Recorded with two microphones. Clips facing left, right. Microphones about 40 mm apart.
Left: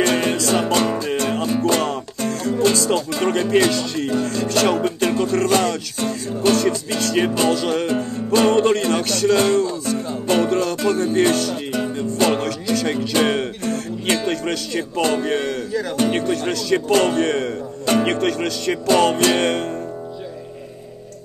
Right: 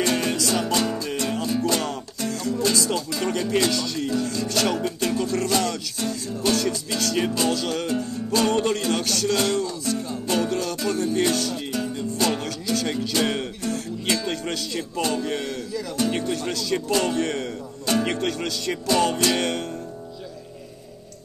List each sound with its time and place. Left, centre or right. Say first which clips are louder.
0.0 s music: left 5 dB; left